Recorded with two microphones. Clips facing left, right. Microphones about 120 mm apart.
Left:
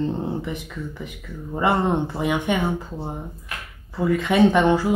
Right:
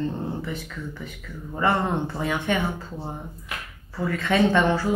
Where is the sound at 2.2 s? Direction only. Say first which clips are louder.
Left 1 dB; 15° left (ahead or behind).